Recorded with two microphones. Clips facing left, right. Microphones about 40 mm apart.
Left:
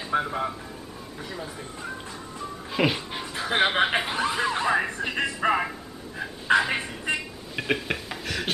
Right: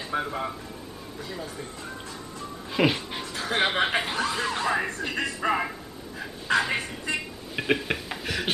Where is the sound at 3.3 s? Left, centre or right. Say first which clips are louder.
Left 2 dB; centre.